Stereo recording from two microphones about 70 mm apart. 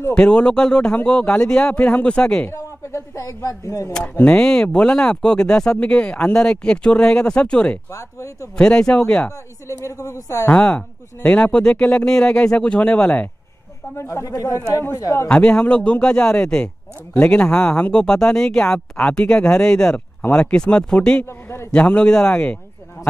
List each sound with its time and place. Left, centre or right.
0.1 s speech: centre
2.5 s a sound: left
4.1 s speech: centre
7.9 s a woman's voice: left
8.5 s speech: centre
9.7 s a woman's voice: left
10.5 s speech: centre
13.9 s speech: left
14.2 s a woman's voice: left
15.2 s speech: centre